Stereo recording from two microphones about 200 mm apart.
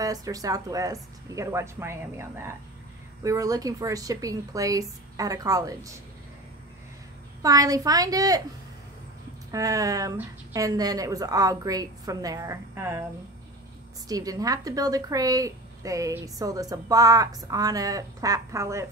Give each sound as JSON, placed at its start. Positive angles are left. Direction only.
{"t": 0.0, "sound": "a woman's voice", "side_deg": -20}
{"t": 7.4, "sound": "a woman's voice", "side_deg": -20}
{"t": 9.5, "sound": "a woman's voice", "side_deg": -15}
{"t": 14.0, "sound": "a woman's voice", "side_deg": -20}